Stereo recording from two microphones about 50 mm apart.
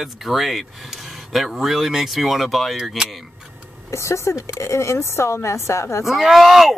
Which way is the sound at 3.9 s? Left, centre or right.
Left.